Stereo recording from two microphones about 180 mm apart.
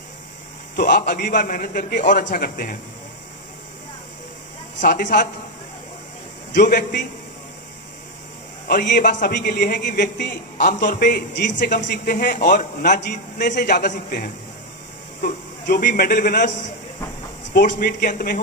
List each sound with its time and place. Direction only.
0.7 s a man's voice: 55° left (ahead or behind)
4.7 s a man's voice: 50° left (ahead or behind)
6.5 s a man's voice: 45° left (ahead or behind)
8.6 s a man's voice: 60° left (ahead or behind)
9.0 s a man's voice: 45° left (ahead or behind)
9.3 s a man's voice: 55° left (ahead or behind)
10.9 s a man's voice: 55° left (ahead or behind)
15.6 s a man's voice: 60° left (ahead or behind)
15.9 s a man's voice: 50° left (ahead or behind)
17.6 s a man's voice: 50° left (ahead or behind)